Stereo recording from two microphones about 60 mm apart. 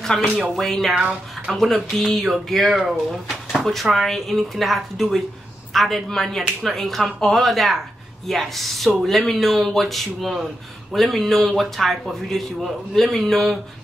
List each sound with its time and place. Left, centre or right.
0.1 s speech: centre
0.9 s a woman's voice: centre
1.5 s speech: centre